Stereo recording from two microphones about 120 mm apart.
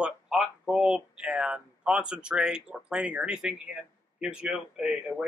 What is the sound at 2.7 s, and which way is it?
Speech, 10° right (ahead or behind).